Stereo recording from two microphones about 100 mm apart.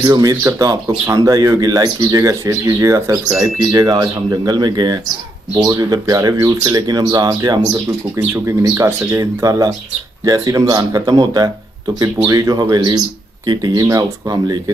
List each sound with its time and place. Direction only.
0.0 s speech: 40° right (ahead or behind)
3.3 s speech: 40° right (ahead or behind)